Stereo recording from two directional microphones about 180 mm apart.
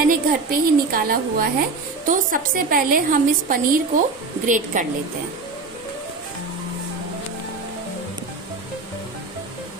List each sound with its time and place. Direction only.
0.1 s a woman's voice: 55° right (ahead or behind)